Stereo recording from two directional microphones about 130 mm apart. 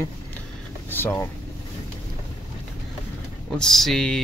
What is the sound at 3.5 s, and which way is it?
Speech, 5° left (ahead or behind).